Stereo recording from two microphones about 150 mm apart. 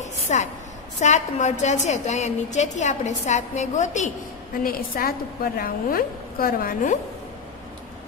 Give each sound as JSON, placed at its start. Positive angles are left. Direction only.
{"t": 0.0, "sound": "a sound", "side_deg": 50}
{"t": 1.0, "sound": "a woman's voice", "side_deg": 50}
{"t": 4.6, "sound": "a woman's voice", "side_deg": 80}